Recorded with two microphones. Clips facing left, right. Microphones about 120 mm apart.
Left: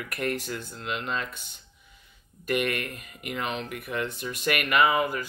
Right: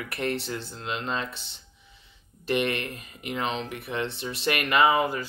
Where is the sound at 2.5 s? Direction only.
30° right (ahead or behind).